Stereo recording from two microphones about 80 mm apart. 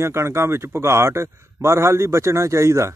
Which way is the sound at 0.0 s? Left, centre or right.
Right.